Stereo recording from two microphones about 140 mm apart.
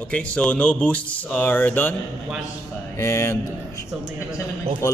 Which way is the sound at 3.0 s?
20° left (ahead or behind).